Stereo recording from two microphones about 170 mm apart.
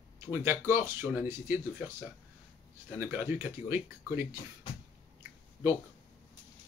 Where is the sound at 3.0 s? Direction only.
15° right (ahead or behind).